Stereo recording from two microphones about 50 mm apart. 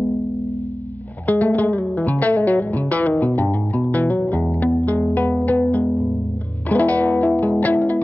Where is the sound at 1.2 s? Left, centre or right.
Left.